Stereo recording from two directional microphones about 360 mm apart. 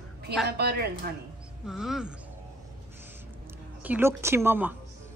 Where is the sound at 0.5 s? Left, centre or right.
Right.